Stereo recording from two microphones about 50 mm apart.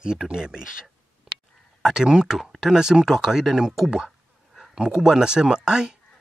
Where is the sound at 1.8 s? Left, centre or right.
Centre.